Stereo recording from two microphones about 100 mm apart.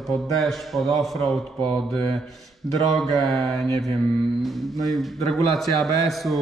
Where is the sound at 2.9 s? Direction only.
5° left (ahead or behind).